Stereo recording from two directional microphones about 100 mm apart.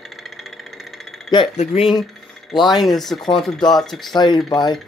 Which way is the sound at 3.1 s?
50° left (ahead or behind).